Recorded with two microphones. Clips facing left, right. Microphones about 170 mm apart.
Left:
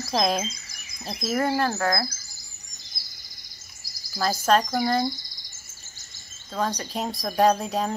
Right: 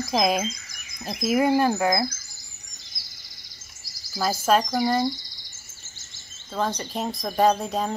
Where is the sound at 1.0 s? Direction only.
10° right (ahead or behind).